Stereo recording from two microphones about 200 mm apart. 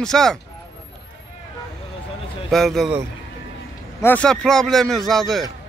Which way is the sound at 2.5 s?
Centre (ahead or behind).